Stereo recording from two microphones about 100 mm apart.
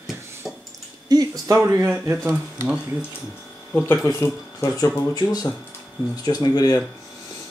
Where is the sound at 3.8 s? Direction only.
25° left (ahead or behind).